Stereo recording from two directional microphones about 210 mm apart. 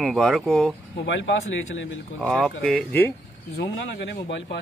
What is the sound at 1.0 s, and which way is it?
Speech, 60° left (ahead or behind).